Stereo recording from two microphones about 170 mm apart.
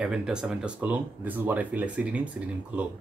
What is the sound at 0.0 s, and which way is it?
Speech, 5° right (ahead or behind).